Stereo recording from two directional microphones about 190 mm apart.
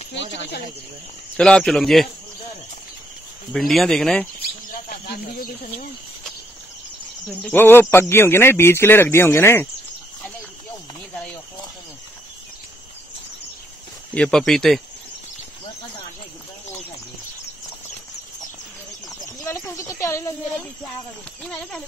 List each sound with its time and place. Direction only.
1.3 s speech: 5° left (ahead or behind)
3.5 s speech: centre (ahead or behind)
4.4 s cricket: 50° left (ahead or behind)
7.2 s speech: 10° left (ahead or behind)
14.1 s speech: 5° left (ahead or behind)
19.0 s a sound: 20° left (ahead or behind)
21.4 s speech: 5° left (ahead or behind)